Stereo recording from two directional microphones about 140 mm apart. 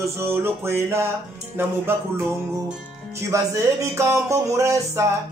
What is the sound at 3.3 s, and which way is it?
Music, 20° right (ahead or behind).